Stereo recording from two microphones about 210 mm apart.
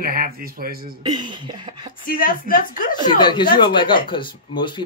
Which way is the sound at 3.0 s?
20° left (ahead or behind).